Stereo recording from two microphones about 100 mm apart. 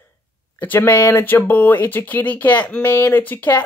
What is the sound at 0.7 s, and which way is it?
Speech, 20° left (ahead or behind).